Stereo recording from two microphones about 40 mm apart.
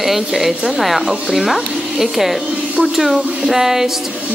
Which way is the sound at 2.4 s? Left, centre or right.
Right.